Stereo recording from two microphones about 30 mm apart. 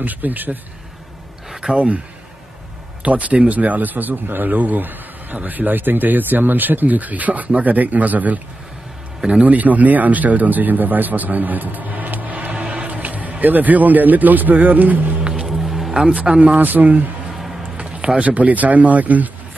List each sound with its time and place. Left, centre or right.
0.0 s speech: right
1.6 s speech: right
3.0 s speech: right
9.4 s speech: right
12.7 s music: right
13.4 s speech: right
15.2 s music: right
15.5 s music: centre
16.3 s speech: right
16.5 s speech: right
17.3 s music: centre
17.7 s a sound: right
18.3 s speech: right